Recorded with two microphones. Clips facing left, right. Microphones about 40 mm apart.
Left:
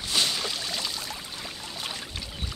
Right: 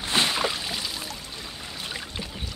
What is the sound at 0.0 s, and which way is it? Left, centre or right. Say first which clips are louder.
Boat: right 4 dB; right.